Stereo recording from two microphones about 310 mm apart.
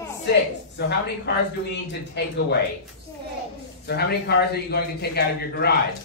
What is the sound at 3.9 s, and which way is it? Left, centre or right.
A man's voice, left.